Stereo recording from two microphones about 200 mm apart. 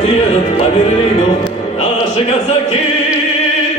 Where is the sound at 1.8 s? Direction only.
30° left (ahead or behind).